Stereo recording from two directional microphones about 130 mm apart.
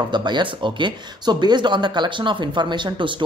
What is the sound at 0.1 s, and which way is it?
Speech, 35° right (ahead or behind).